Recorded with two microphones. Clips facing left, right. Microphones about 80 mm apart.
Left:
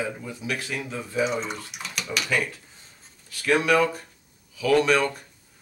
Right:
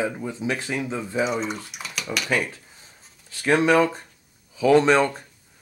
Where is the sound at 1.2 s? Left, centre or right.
Centre.